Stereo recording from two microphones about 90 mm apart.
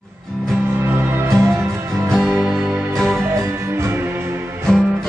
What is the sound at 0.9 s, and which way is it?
Music, 25° right (ahead or behind).